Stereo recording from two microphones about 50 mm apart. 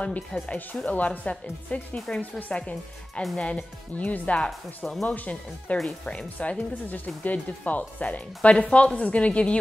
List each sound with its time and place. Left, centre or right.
0.0 s speech: left
1.3 s speech: centre
4.5 s speech: centre
5.0 s speech: left
8.4 s speech: centre